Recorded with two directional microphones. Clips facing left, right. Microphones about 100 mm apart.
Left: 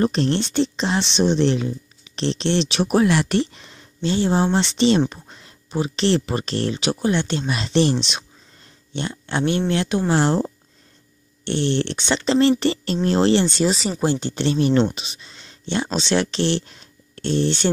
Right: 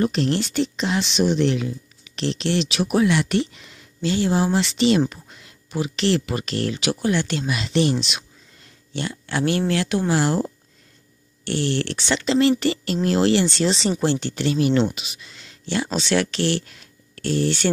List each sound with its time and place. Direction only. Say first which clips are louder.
0.0 s speech: left 1 dB; 35° left (ahead or behind)